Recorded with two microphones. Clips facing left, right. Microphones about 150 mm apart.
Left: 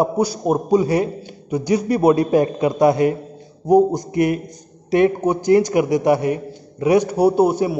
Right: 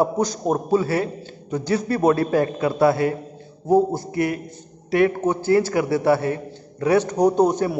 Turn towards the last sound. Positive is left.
turn(degrees=10)  # may be behind; listen again after turning